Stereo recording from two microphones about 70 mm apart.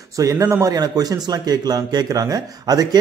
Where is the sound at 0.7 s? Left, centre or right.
Right.